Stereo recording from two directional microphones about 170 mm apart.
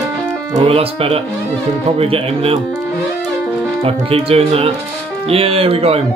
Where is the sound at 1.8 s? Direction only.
35° right (ahead or behind).